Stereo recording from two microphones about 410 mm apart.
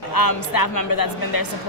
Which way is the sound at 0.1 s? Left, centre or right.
Left.